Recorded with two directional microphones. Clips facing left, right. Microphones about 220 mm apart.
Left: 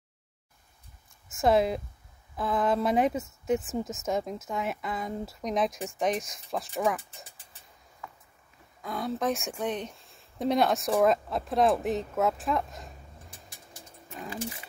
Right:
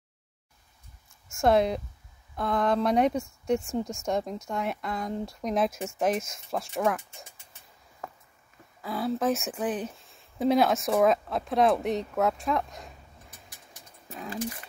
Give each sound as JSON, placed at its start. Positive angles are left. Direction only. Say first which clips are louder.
{"t": 1.3, "sound": "speech", "louder": "right 1 dB", "side_deg": 0}
{"t": 8.0, "sound": "a sound", "louder": "right 5 dB", "side_deg": -40}
{"t": 8.8, "sound": "speech", "louder": "right 2 dB", "side_deg": 0}